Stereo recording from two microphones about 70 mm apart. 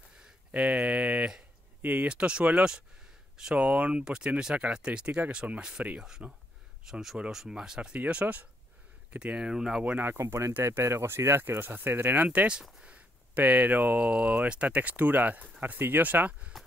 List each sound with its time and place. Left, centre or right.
0.5 s a sound: centre
1.8 s speech: right
9.9 s speech: right
12.3 s speech: centre